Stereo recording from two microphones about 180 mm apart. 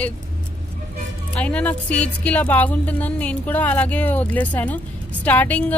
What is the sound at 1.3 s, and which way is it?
Speech, 5° left (ahead or behind).